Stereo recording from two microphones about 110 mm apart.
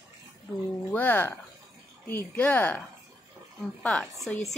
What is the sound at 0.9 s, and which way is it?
Speech, 15° left (ahead or behind).